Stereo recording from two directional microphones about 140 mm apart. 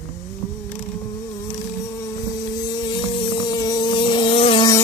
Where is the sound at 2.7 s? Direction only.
35° left (ahead or behind).